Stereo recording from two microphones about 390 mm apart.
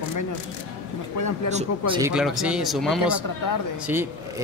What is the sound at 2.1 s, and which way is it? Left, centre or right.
A man's voice, centre.